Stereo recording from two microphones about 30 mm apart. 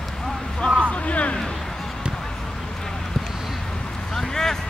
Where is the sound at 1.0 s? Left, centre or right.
Left.